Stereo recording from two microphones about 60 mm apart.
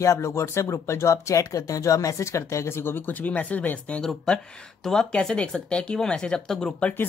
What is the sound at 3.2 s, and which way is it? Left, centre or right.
Speech, left.